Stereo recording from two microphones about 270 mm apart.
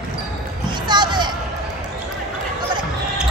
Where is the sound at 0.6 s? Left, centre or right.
Centre.